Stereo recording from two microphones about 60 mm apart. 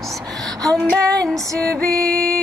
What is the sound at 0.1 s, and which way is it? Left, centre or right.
Music, right.